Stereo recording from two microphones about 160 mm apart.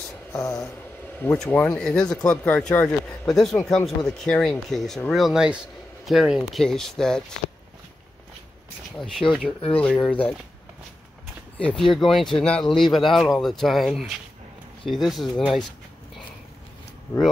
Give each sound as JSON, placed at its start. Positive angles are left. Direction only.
{"t": 0.3, "sound": "speech", "side_deg": 20}
{"t": 9.0, "sound": "speech", "side_deg": 5}
{"t": 11.5, "sound": "speech", "side_deg": 5}